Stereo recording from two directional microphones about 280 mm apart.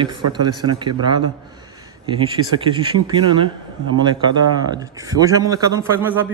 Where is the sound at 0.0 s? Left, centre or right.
Centre.